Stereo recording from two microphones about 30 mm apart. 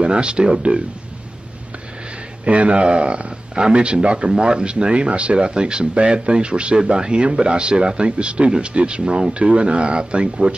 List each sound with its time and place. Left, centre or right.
0.0 s speech: right
2.4 s speech: right
4.3 s speech: right